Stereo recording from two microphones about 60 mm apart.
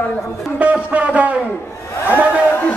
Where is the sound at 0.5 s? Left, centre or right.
Right.